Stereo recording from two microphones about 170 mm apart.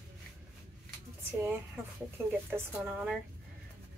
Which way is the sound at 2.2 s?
15° right (ahead or behind).